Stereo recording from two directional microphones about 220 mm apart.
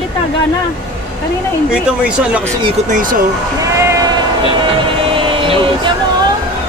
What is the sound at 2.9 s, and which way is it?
Speech, 40° right (ahead or behind).